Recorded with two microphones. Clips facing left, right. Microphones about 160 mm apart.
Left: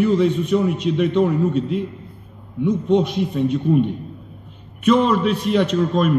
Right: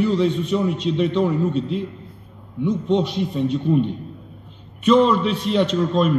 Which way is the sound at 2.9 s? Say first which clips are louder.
Left 3 dB; 10° left (ahead or behind).